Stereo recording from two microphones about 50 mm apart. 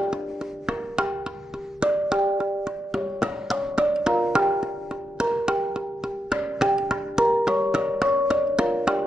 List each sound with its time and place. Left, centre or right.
0.7 s music: centre